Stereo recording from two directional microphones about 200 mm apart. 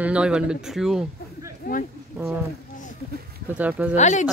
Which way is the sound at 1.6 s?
40° left (ahead or behind).